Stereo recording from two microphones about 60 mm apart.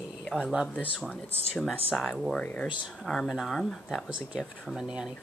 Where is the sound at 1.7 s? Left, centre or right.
Centre.